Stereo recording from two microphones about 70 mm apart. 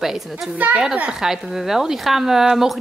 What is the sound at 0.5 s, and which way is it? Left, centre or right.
Speech, right.